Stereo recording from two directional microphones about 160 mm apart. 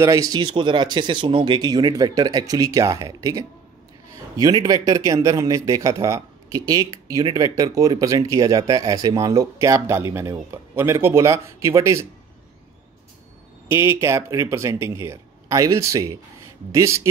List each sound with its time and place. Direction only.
0.0 s a man's voice: 20° right (ahead or behind)
13.7 s a man's voice: 15° right (ahead or behind)